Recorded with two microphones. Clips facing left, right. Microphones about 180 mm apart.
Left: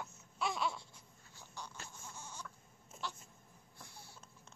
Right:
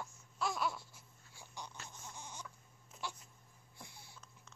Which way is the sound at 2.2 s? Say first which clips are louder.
Even; 15° right (ahead or behind).